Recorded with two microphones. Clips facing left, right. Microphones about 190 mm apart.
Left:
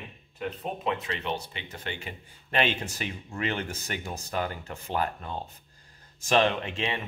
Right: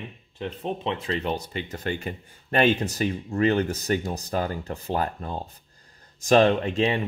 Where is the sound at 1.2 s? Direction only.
40° right (ahead or behind).